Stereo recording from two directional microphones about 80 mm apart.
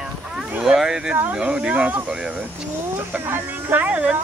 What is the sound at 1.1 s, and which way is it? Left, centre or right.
Speech, right.